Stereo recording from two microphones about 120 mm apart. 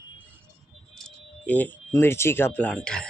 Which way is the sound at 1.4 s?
15° left (ahead or behind).